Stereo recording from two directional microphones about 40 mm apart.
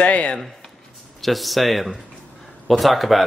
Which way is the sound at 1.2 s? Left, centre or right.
Centre.